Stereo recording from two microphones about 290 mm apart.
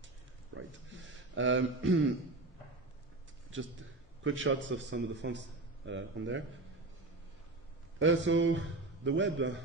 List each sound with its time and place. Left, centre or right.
0.6 s a sound: right
4.2 s a man's voice: right
8.0 s a man's voice: right